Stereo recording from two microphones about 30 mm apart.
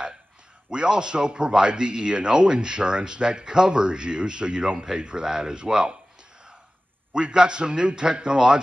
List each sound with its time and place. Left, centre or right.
0.7 s speech: right
7.1 s speech: right